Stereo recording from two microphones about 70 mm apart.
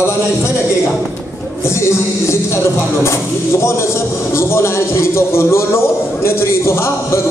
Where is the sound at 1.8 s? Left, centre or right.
Left.